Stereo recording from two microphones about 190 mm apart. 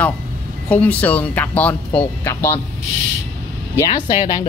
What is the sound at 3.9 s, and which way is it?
Speech, 20° left (ahead or behind).